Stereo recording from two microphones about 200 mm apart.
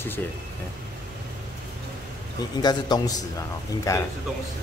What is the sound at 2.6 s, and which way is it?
A man's voice, 20° left (ahead or behind).